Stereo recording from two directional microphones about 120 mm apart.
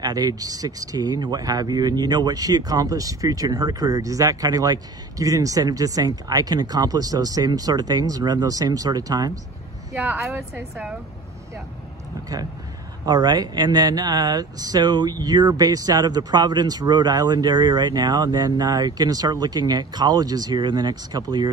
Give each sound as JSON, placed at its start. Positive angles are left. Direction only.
{"t": 0.0, "sound": "speech", "side_deg": -35}
{"t": 9.9, "sound": "a woman's voice", "side_deg": -5}
{"t": 13.0, "sound": "speech", "side_deg": -35}